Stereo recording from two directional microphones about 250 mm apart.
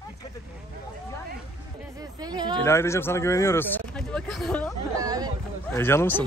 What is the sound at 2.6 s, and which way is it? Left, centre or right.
Speech, centre.